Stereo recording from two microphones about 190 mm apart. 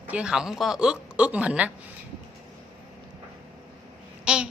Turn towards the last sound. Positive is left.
turn(degrees=-5)  # may be behind; listen again after turning